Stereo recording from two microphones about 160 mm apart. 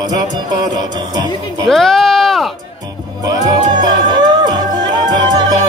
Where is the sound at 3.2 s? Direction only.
25° right (ahead or behind).